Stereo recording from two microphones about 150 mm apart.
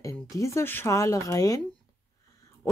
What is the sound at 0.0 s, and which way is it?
Speech, 20° left (ahead or behind).